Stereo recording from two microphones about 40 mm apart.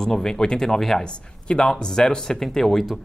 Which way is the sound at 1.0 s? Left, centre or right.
Centre.